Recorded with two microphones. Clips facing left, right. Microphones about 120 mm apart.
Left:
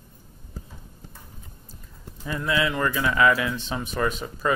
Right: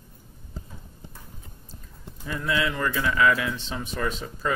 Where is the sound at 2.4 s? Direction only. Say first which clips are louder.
Left 2 dB; 60° left (ahead or behind).